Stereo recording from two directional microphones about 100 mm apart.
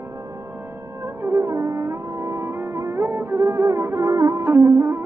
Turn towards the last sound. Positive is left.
turn(degrees=-30)  # may be behind; listen again after turning